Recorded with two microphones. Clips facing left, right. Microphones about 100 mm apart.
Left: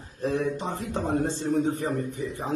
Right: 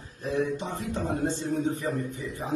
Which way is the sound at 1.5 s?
35° left (ahead or behind).